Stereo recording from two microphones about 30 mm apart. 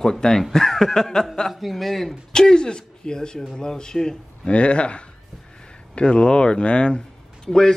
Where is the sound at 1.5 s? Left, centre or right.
Centre.